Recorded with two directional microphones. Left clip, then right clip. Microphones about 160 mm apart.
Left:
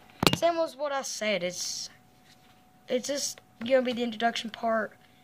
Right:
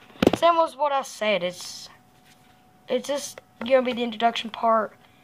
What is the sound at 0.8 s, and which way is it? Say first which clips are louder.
Speech: right 7 dB; 25° left (ahead or behind).